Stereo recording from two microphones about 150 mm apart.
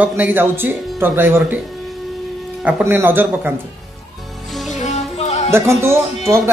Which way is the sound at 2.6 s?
10° right (ahead or behind).